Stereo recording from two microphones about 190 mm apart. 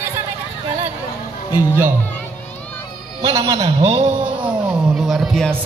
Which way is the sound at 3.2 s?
20° right (ahead or behind).